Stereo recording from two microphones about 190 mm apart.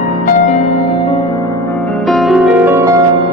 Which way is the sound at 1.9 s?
Centre (ahead or behind).